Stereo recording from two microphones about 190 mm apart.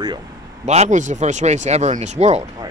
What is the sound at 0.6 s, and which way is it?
Speech, 40° right (ahead or behind).